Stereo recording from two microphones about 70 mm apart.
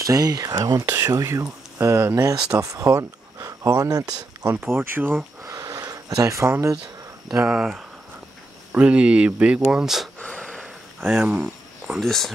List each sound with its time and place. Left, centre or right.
0.0 s speech: right
1.0 s speech: right
2.5 s speech: right
4.6 s speech: right
5.6 s a sound: right
7.3 s speech: centre
10.1 s a sound: centre
11.2 s a sound: centre
12.0 s speech: centre